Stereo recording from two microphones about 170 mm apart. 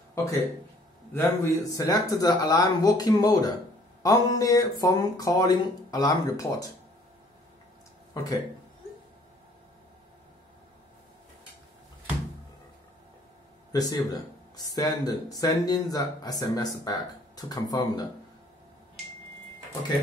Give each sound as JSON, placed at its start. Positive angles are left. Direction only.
{"t": 0.1, "sound": "speech", "side_deg": 20}
{"t": 8.1, "sound": "speech", "side_deg": 20}
{"t": 13.7, "sound": "a sound", "side_deg": 20}
{"t": 14.8, "sound": "speech", "side_deg": 20}